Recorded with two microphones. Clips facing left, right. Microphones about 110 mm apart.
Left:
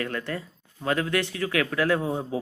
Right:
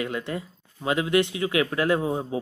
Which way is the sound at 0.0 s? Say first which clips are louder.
Right 1 dB; 15° right (ahead or behind).